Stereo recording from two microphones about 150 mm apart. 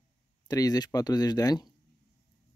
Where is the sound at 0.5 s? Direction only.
25° left (ahead or behind).